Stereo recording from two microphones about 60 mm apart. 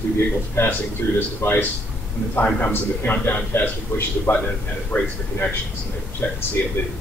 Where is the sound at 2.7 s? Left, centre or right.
Left.